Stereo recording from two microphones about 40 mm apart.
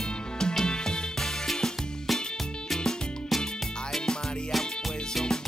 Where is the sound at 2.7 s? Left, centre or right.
Centre.